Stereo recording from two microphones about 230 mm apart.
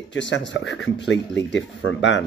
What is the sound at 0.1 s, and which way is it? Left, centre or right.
Speech, left.